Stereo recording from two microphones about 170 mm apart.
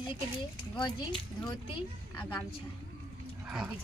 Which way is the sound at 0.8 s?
25° left (ahead or behind).